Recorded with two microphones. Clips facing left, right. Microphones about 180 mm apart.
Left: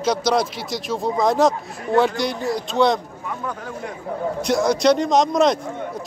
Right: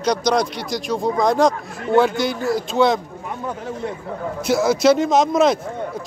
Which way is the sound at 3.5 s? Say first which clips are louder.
Right 6 dB; 25° right (ahead or behind).